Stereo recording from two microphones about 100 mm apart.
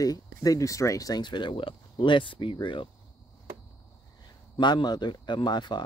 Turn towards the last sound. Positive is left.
turn(degrees=45)  # may be behind; listen again after turning